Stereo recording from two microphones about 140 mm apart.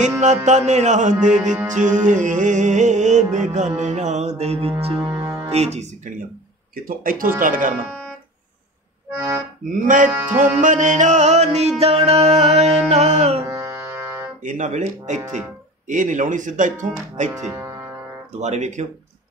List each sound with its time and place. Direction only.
0.2 s music: 60° right (ahead or behind)
5.0 s music: 20° right (ahead or behind)
5.5 s music: 50° right (ahead or behind)
6.7 s speech: 90° right; by 7.7 s 75° right (ahead or behind)
9.7 s music: 70° right (ahead or behind); by 13.4 s 55° right (ahead or behind)
13.5 s music: 20° right (ahead or behind)
14.4 s music: 65° right (ahead or behind)
17.5 s music: 25° right (ahead or behind)
18.3 s music: 55° right (ahead or behind)